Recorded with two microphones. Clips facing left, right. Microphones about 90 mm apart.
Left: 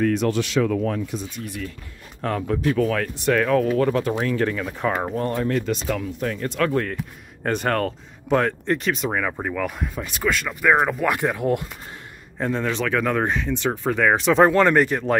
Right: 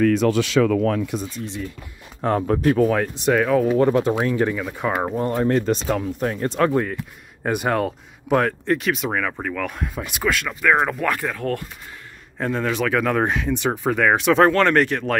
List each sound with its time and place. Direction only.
0.6 s speech: 90° right
1.4 s speech: 25° right (ahead or behind)
2.2 s speech: 35° right (ahead or behind)
2.7 s speech: 25° right (ahead or behind)
3.3 s speech: 10° right (ahead or behind)
3.6 s speech: 20° right (ahead or behind)
5.3 s speech: 30° right (ahead or behind)
6.7 s speech: 10° right (ahead or behind)
9.2 s speech: 10° left (ahead or behind)
10.6 s speech: 10° left (ahead or behind)
12.4 s speech: centre (ahead or behind)